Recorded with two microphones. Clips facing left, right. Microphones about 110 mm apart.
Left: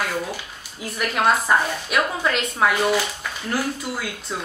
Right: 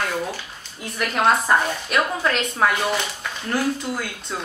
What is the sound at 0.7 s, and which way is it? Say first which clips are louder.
A woman's voice: even; 5° left (ahead or behind).